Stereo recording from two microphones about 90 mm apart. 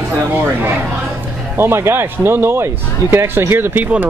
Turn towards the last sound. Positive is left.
turn(degrees=-25)  # may be behind; listen again after turning